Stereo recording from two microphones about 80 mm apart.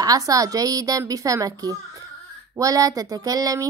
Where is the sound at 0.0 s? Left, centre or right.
Right.